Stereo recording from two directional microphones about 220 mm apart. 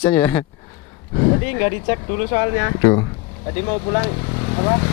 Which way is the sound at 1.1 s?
30° left (ahead or behind).